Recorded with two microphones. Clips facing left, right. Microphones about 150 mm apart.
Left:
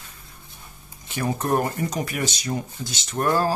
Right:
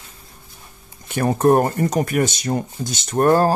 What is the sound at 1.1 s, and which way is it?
Speech, 55° right (ahead or behind).